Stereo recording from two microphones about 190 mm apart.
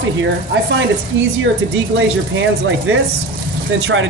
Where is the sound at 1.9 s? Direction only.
80° right.